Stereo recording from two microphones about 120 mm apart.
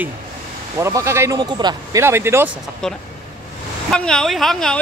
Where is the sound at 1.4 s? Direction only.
35° right (ahead or behind).